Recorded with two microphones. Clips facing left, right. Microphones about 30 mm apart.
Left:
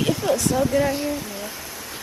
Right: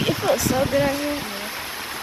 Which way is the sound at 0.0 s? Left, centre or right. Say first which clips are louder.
Right 1 dB; right.